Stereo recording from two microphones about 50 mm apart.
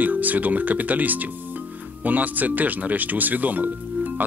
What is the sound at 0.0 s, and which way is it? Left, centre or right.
Speech, right.